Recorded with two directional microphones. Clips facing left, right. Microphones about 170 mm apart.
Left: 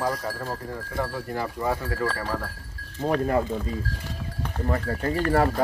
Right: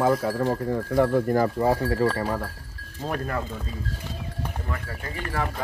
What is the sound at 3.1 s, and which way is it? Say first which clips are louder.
Speech: left 6 dB; 20° left (ahead or behind).